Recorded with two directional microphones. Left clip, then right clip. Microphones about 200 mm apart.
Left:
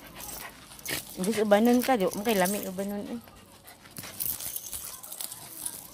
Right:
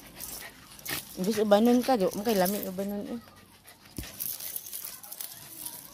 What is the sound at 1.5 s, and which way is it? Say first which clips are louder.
Speech: even; 10° right (ahead or behind).